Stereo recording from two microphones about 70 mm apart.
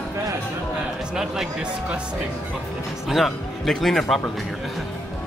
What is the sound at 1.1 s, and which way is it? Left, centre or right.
Speech, centre.